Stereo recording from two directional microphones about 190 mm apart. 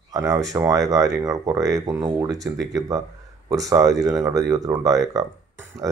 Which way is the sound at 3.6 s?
20° right (ahead or behind).